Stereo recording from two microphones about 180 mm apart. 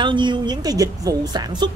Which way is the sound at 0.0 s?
25° right (ahead or behind).